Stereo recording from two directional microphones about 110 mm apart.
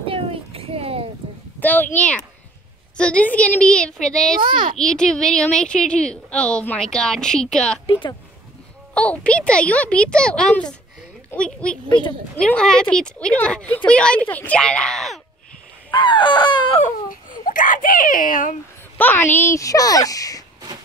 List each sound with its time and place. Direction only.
0.0 s a sound: 55° right (ahead or behind)
1.6 s speech: 15° left (ahead or behind)
4.4 s a child's voice: 50° right (ahead or behind)
4.7 s speech: 5° left (ahead or behind)
7.8 s baby cry: 50° left (ahead or behind)
8.9 s speech: 10° left (ahead or behind)
15.9 s baby cry: 45° left (ahead or behind)
18.9 s speech: 20° left (ahead or behind); by 20.4 s 35° left (ahead or behind)